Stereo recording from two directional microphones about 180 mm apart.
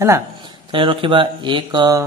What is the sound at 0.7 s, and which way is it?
Speech, 30° right (ahead or behind).